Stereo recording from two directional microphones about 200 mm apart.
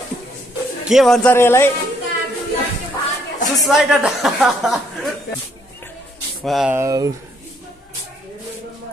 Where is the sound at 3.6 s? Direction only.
Centre (ahead or behind).